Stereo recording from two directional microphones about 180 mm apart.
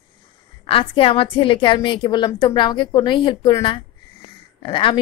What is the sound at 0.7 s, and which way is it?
A woman's voice, 30° left (ahead or behind).